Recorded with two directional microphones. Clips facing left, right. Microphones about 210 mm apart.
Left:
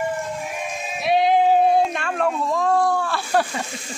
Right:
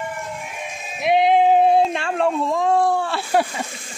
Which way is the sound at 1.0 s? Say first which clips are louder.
Right 2 dB; 20° right (ahead or behind).